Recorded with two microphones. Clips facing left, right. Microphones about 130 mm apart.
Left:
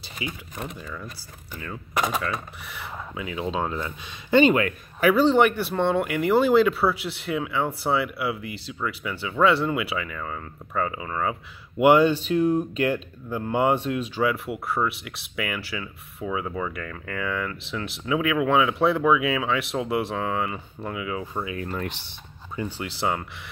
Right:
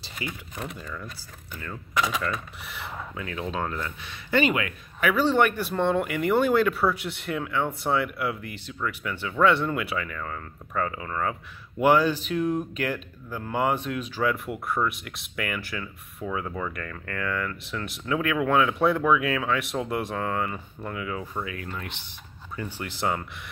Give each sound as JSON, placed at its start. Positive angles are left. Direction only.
{"t": 0.2, "sound": "speech", "side_deg": 5}
{"t": 3.2, "sound": "speech", "side_deg": 15}
{"t": 4.6, "sound": "speech", "side_deg": 35}
{"t": 5.4, "sound": "speech", "side_deg": 5}
{"t": 11.8, "sound": "speech", "side_deg": 20}
{"t": 14.2, "sound": "speech", "side_deg": 5}
{"t": 21.4, "sound": "speech", "side_deg": 20}
{"t": 21.6, "sound": "speech", "side_deg": 40}
{"t": 22.8, "sound": "speech", "side_deg": 5}